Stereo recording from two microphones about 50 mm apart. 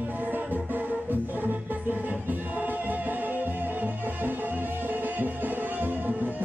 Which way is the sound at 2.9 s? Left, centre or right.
Right.